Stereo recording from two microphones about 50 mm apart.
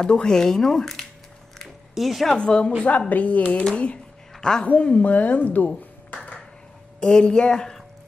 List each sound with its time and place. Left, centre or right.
0.0 s speech: centre
1.6 s music: centre
2.2 s speech: centre
3.1 s a woman's voice: left
3.6 s a sound: left
4.6 s a woman's voice: left
7.0 s speech: centre